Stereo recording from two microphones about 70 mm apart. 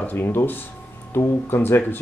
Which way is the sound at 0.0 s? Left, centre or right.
Left.